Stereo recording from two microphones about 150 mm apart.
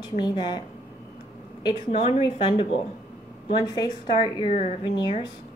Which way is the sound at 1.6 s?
35° left (ahead or behind).